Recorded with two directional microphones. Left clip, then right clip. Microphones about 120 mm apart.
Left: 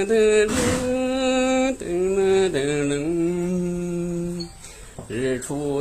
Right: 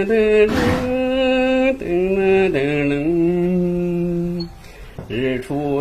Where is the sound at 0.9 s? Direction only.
20° left (ahead or behind).